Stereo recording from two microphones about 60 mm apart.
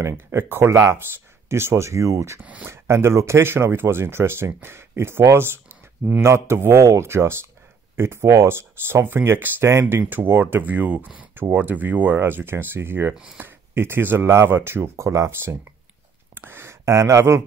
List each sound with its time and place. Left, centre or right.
0.0 s speech: right